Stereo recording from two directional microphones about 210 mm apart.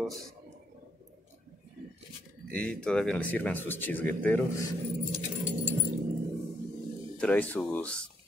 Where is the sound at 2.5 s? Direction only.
5° left (ahead or behind).